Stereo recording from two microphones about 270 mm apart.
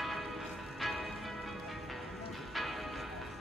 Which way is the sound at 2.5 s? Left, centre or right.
Centre.